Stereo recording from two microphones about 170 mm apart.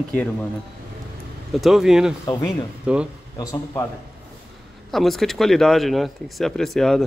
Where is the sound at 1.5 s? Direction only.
Centre (ahead or behind).